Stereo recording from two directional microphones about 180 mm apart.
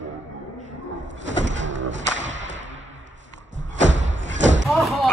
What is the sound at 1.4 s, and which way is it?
Bird, 90° right.